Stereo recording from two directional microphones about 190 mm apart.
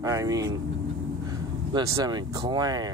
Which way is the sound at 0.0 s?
15° right (ahead or behind).